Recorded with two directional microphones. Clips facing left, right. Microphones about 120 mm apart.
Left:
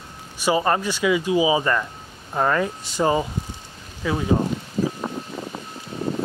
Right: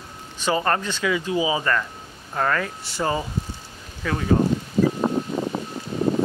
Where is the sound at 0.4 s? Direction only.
15° left (ahead or behind).